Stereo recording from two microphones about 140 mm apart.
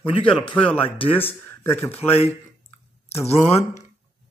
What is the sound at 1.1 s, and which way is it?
Speech, 15° left (ahead or behind).